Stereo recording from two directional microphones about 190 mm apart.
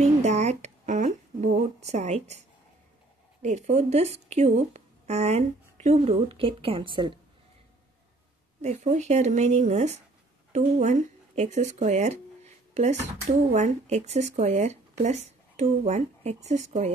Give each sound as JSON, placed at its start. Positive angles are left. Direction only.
{"t": 0.0, "sound": "a sound", "side_deg": -35}
{"t": 3.4, "sound": "speech", "side_deg": -35}
{"t": 8.5, "sound": "speech", "side_deg": -35}